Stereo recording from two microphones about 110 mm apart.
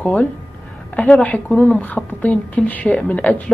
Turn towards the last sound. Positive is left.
turn(degrees=15)  # may be behind; listen again after turning